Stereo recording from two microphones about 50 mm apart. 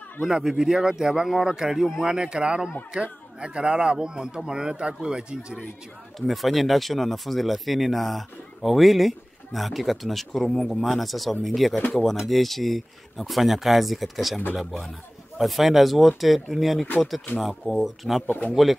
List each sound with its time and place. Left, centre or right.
0.2 s speech: centre
2.0 s speech: centre
6.1 s speech: centre
18.2 s speech: left
18.5 s speech: centre